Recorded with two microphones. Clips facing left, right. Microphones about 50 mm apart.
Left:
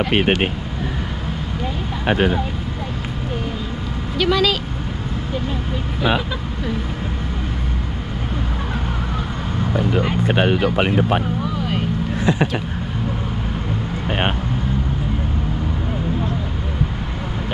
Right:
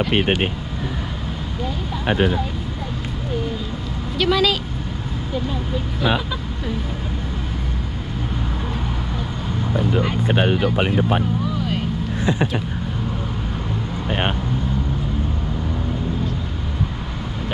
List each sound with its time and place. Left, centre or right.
0.1 s speech: left
2.0 s speech: left
4.2 s speech: centre
10.2 s speech: left
12.2 s speech: left